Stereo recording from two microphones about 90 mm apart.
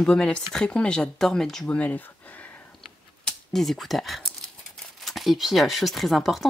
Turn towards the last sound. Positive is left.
turn(degrees=0)  # may be behind; listen again after turning